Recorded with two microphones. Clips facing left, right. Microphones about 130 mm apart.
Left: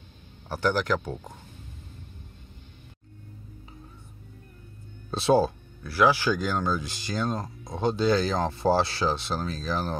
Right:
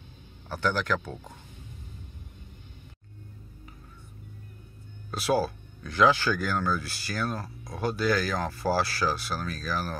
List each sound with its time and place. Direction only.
0.5 s a man's voice: 15° left (ahead or behind)
5.1 s speech: 25° left (ahead or behind)
5.9 s speech: 10° left (ahead or behind)